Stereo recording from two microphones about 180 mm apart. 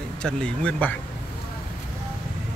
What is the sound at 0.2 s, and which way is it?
Speech, 5° left (ahead or behind).